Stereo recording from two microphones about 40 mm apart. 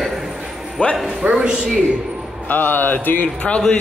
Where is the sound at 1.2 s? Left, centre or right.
Right.